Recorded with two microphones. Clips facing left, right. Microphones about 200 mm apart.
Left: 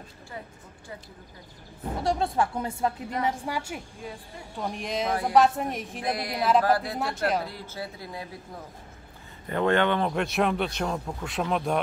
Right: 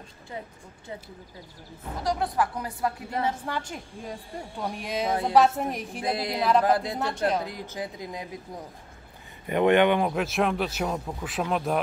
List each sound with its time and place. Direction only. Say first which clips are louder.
2.0 s speech: left 1 dB; 25° left (ahead or behind)
3.3 s a woman's voice: left 1 dB; 10° left (ahead or behind)
4.6 s speech: left 1 dB; centre (ahead or behind)
5.0 s speech: right 2 dB; 20° right (ahead or behind)
5.3 s speech: even; centre (ahead or behind)
6.0 s speech: right 1 dB; 25° right (ahead or behind)
7.0 s speech: right 1 dB; centre (ahead or behind)
7.4 s speech: right 2 dB; 15° right (ahead or behind)
9.5 s speech: right 3 dB; 15° right (ahead or behind); by 11.8 s centre (ahead or behind)